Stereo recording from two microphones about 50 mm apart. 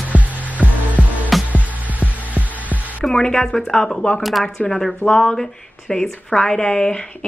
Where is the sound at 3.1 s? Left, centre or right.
Centre.